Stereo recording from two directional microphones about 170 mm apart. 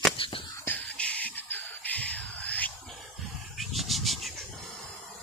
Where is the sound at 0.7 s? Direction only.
10° left (ahead or behind).